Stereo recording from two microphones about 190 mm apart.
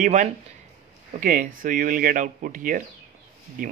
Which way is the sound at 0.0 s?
40° right (ahead or behind).